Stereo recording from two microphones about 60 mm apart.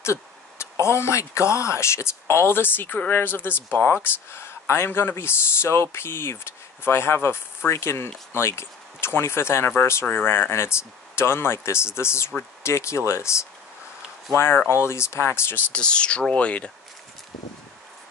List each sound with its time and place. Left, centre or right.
0.0 s a sound: left
0.8 s speech: left
15.7 s speech: centre